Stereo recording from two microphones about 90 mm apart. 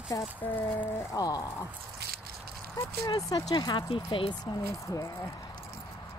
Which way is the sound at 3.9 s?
70° left (ahead or behind).